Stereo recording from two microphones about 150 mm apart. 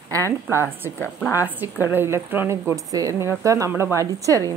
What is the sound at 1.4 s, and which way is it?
A woman's voice, 15° right (ahead or behind).